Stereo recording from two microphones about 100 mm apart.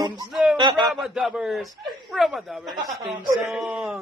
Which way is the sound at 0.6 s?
50° right (ahead or behind).